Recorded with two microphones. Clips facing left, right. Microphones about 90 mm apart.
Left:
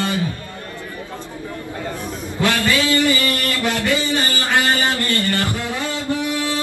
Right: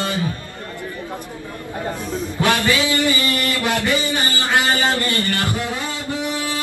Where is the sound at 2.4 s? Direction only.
20° right (ahead or behind).